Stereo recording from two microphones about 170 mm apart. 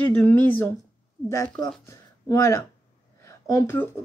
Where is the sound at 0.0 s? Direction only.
10° left (ahead or behind).